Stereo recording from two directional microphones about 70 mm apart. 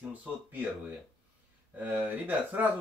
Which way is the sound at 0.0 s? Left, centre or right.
Right.